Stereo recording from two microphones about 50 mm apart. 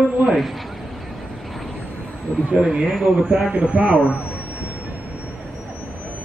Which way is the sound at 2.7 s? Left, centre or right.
Centre.